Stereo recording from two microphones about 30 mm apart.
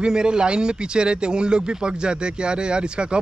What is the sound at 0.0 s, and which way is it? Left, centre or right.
Speech, right.